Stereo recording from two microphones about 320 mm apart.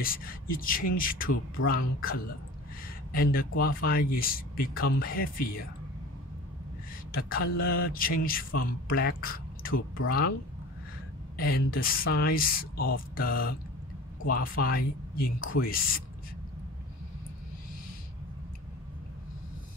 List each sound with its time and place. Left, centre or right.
0.0 s speech: left
3.1 s speech: left
7.1 s speech: left
11.3 s speech: left
14.6 s speech: left